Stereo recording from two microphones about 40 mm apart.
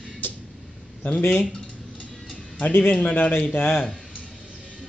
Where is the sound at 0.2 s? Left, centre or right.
Left.